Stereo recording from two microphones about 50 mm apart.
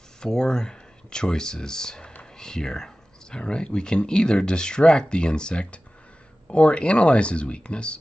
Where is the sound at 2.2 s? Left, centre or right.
Centre.